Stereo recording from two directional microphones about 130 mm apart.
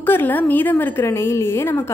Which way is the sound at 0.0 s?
15° left (ahead or behind).